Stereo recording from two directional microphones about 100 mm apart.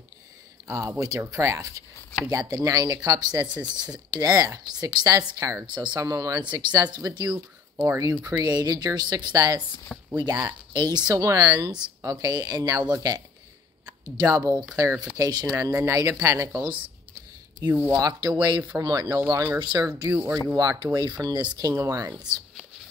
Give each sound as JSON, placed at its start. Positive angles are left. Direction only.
{"t": 0.7, "sound": "a woman's voice", "side_deg": -30}
{"t": 5.7, "sound": "a woman's voice", "side_deg": -50}
{"t": 5.9, "sound": "speech", "side_deg": -35}
{"t": 6.4, "sound": "a woman's voice", "side_deg": -50}
{"t": 7.3, "sound": "speech", "side_deg": -15}
{"t": 8.2, "sound": "speech", "side_deg": -40}
{"t": 17.6, "sound": "speech", "side_deg": -20}
{"t": 17.9, "sound": "a woman's voice", "side_deg": -40}
{"t": 20.1, "sound": "speech", "side_deg": -15}
{"t": 20.8, "sound": "a woman's voice", "side_deg": -45}